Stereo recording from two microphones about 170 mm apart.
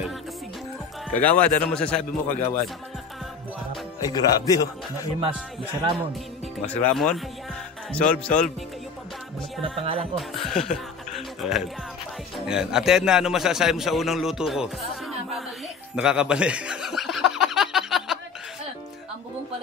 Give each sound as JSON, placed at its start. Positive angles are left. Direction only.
{"t": 1.1, "sound": "a man's voice", "side_deg": 10}
{"t": 4.0, "sound": "speech", "side_deg": 20}
{"t": 6.6, "sound": "a man's voice", "side_deg": 10}
{"t": 9.6, "sound": "speech", "side_deg": -35}
{"t": 10.1, "sound": "a man's voice", "side_deg": 0}
{"t": 16.0, "sound": "snicker", "side_deg": -5}